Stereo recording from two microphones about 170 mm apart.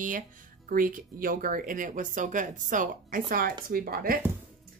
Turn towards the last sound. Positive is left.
turn(degrees=-60)  # may be behind; listen again after turning